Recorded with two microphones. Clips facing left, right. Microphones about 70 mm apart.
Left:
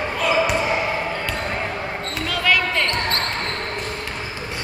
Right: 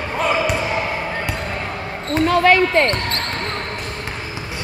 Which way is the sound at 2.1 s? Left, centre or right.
Right.